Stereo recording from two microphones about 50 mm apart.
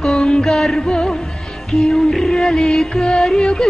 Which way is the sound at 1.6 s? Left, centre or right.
Centre.